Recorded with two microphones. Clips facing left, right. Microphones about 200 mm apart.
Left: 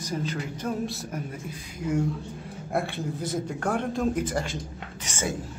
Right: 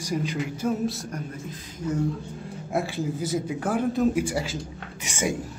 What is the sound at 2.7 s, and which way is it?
Speech, centre (ahead or behind).